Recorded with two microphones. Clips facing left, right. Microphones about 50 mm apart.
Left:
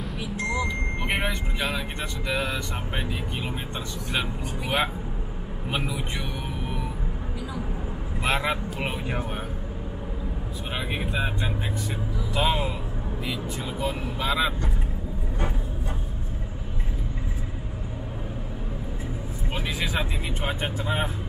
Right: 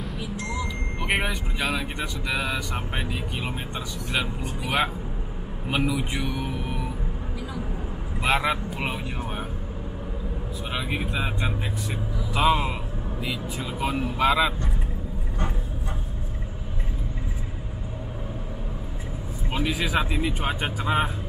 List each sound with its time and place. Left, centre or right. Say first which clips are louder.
0.4 s vehicle: left 6 dB; left
1.0 s speech: right 3 dB; centre
5.9 s music: right 4 dB; centre
8.2 s speech: right 2 dB; centre
10.7 s speech: right 1 dB; centre
19.5 s speech: right 4 dB; centre